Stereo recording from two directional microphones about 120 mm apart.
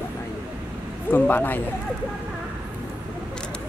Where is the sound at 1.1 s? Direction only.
15° left (ahead or behind).